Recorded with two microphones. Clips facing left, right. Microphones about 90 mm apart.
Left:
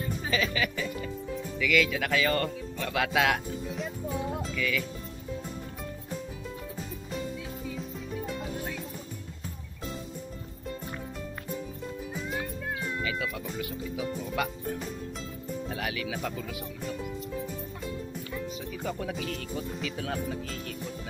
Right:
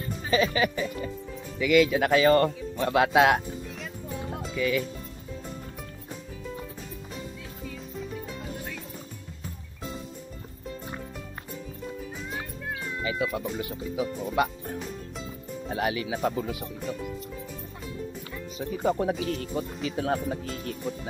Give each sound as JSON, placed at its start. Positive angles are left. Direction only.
{"t": 0.3, "sound": "speech", "side_deg": -30}
{"t": 3.6, "sound": "music", "side_deg": 0}
{"t": 4.6, "sound": "speech", "side_deg": -30}
{"t": 8.3, "sound": "music", "side_deg": 0}
{"t": 12.2, "sound": "music", "side_deg": 0}
{"t": 13.0, "sound": "cat", "side_deg": -25}
{"t": 13.6, "sound": "speech", "side_deg": -30}
{"t": 16.8, "sound": "speech", "side_deg": 0}
{"t": 18.6, "sound": "speech", "side_deg": -35}